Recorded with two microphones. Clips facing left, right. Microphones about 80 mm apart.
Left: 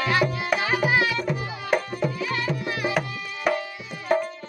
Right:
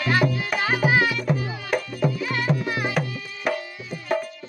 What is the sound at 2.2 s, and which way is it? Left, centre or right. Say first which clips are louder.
Music: right 2 dB; right.